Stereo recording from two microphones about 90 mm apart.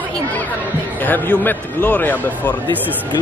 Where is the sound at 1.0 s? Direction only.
20° left (ahead or behind).